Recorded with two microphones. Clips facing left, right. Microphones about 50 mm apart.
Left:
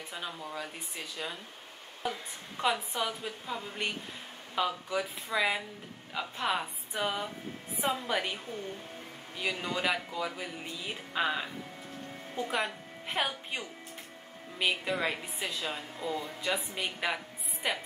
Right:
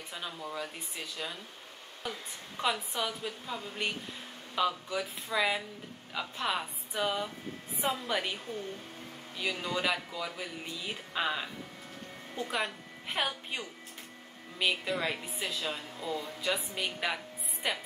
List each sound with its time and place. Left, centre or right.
0.1 s speech: centre
2.0 s speech: centre
9.4 s a woman's voice: centre